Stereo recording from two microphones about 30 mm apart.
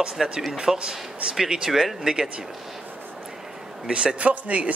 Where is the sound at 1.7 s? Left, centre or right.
Centre.